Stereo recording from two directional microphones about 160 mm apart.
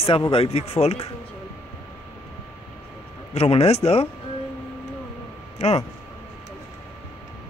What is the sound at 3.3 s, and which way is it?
Speech, 40° left (ahead or behind).